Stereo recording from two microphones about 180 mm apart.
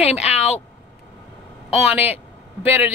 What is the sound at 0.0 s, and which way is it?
Speech, 35° left (ahead or behind).